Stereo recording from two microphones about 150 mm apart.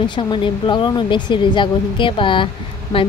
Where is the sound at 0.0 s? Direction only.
30° left (ahead or behind).